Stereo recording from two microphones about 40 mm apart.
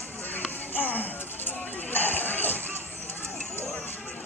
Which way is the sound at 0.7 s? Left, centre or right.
Left.